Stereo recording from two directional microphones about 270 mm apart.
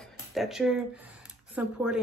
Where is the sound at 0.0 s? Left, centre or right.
Centre.